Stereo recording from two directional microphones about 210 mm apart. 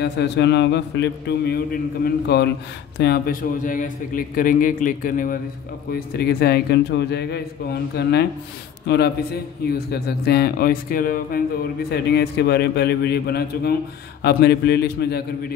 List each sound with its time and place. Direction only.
0.0 s a man's voice: 55° left (ahead or behind)